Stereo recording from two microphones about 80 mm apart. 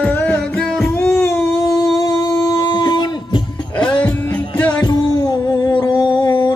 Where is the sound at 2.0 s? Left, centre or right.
Left.